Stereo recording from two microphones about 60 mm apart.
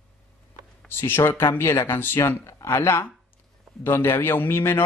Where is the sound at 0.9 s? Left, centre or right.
Left.